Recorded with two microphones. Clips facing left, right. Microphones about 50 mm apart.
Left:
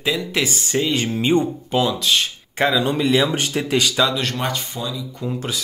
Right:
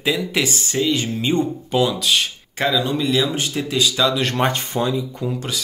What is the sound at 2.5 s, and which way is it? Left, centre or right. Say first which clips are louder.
Speech: left 2 dB; centre.